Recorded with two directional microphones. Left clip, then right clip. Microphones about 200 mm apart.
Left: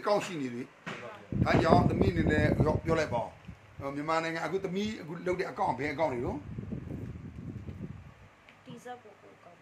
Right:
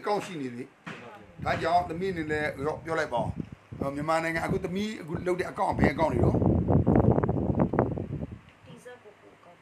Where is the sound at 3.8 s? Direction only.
40° right (ahead or behind).